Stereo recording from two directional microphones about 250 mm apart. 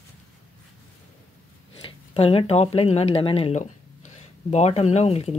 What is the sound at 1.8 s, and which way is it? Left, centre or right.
Speech, left.